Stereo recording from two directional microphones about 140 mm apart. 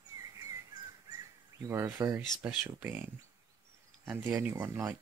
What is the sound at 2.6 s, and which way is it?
Speech, 10° right (ahead or behind).